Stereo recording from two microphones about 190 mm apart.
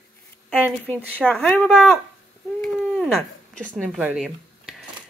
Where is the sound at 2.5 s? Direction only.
5° left (ahead or behind).